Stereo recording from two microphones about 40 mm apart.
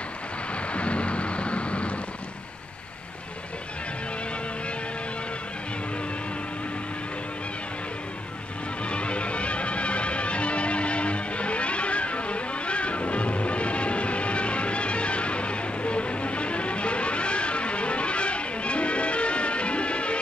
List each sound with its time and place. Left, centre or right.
0.6 s rain: left
8.8 s music: left